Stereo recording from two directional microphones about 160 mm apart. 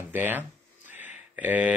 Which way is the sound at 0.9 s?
10° right (ahead or behind).